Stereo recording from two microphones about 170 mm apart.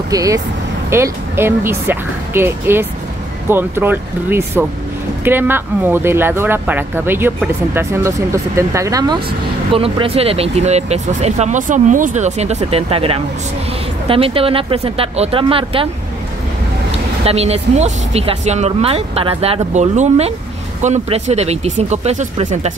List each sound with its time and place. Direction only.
0.1 s speech: 20° right (ahead or behind)
9.7 s speech: 30° right (ahead or behind)
17.2 s speech: 35° right (ahead or behind)